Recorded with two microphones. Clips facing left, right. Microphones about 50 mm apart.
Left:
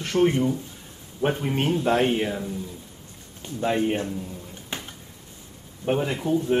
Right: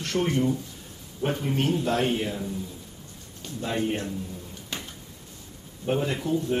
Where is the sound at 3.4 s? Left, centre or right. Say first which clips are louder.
Left 5 dB; left.